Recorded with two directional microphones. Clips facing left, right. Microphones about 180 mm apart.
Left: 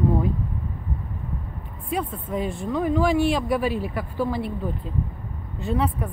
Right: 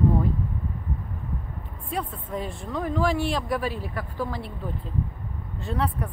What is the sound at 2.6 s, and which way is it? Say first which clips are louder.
Speech: left 7 dB; centre (ahead or behind).